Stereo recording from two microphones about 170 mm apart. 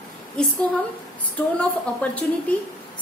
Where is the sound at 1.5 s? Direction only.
10° left (ahead or behind).